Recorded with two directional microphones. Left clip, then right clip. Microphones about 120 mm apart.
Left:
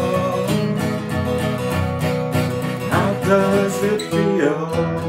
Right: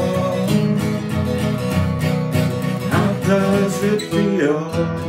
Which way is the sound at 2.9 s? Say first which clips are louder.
Left 2 dB; 20° left (ahead or behind).